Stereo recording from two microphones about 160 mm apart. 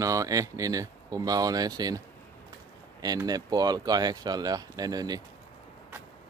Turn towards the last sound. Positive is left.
turn(degrees=-25)  # may be behind; listen again after turning